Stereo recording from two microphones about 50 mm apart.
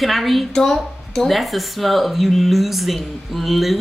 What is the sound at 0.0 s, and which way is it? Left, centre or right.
A woman's voice, centre.